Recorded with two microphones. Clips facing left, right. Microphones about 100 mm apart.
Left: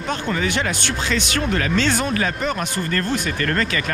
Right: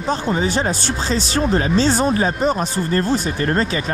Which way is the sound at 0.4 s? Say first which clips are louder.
Right 3 dB; 65° left (ahead or behind).